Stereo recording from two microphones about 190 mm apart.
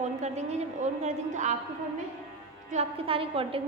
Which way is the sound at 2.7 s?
30° right (ahead or behind).